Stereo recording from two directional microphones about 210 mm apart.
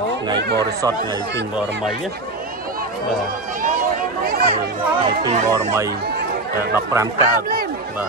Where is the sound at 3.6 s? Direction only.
40° right (ahead or behind).